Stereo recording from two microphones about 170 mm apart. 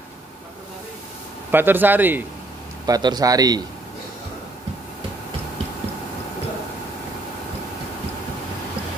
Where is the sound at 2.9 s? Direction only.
25° right (ahead or behind).